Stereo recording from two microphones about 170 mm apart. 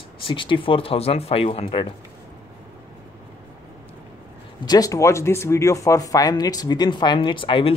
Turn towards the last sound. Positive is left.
turn(degrees=30)  # may be behind; listen again after turning